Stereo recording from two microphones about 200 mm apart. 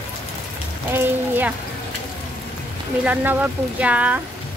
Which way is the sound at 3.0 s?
10° right (ahead or behind).